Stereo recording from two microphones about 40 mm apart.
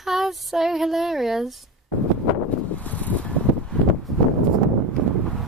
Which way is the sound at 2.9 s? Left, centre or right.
Left.